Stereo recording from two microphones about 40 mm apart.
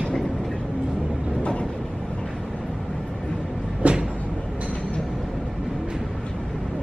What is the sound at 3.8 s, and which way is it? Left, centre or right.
Train, right.